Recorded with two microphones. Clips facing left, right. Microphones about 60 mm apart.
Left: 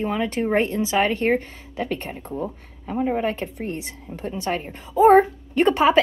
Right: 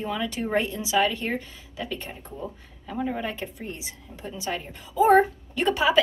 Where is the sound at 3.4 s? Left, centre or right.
Left.